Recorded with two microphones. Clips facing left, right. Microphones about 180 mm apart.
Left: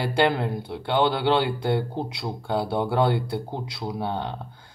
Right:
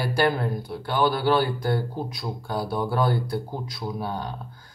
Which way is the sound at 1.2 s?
25° left (ahead or behind).